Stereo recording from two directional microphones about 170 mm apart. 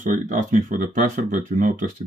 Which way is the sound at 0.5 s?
55° right (ahead or behind).